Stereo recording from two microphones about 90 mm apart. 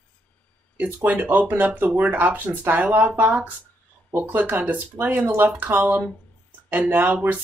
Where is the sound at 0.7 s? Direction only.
20° right (ahead or behind).